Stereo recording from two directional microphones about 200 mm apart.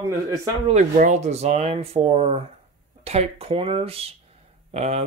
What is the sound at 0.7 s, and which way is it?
Speech, 40° right (ahead or behind).